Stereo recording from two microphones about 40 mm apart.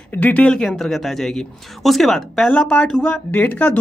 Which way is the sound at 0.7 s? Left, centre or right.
Centre.